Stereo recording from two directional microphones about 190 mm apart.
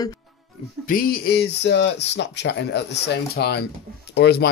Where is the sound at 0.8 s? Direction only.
50° left (ahead or behind).